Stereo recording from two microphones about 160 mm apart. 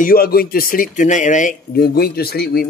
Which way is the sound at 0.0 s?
70° left (ahead or behind).